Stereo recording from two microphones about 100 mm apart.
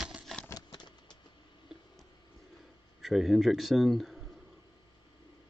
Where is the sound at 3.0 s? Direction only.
5° right (ahead or behind).